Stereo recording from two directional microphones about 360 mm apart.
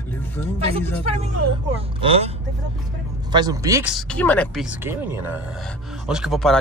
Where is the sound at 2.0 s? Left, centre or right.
Centre.